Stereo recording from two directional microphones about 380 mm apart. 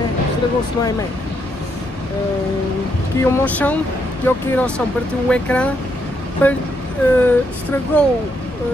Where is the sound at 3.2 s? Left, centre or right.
Centre.